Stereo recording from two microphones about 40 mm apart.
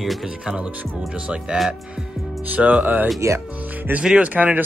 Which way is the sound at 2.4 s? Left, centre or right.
Right.